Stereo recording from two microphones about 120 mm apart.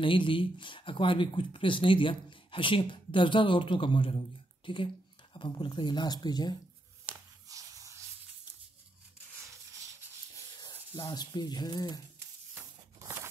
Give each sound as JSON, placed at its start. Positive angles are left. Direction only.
{"t": 0.0, "sound": "speech", "side_deg": 45}
{"t": 7.4, "sound": "a sound", "side_deg": -30}
{"t": 10.3, "sound": "speech", "side_deg": 30}
{"t": 13.0, "sound": "scissors", "side_deg": -25}